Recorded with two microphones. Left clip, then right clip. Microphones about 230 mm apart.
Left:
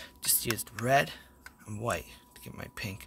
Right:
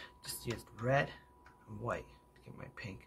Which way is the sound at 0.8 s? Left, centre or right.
Left.